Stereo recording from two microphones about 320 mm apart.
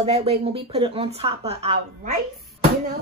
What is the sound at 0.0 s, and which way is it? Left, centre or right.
Speech, centre.